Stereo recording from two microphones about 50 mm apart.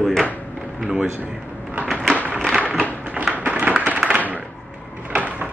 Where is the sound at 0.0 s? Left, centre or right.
Centre.